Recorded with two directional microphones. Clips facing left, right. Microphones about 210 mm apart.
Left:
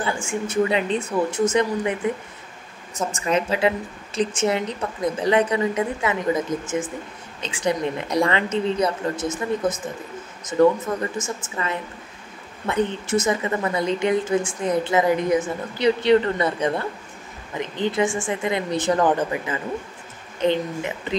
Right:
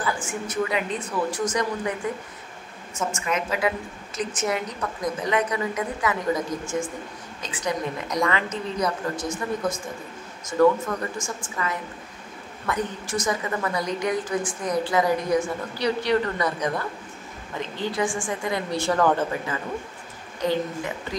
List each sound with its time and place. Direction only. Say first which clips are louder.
0.0 s a woman's voice: left 3 dB; 25° left (ahead or behind)
3.0 s a woman's voice: left 4 dB; 35° left (ahead or behind)
7.4 s a woman's voice: left 5 dB; 30° left (ahead or behind)